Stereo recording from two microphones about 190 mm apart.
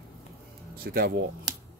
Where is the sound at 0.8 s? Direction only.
50° right (ahead or behind).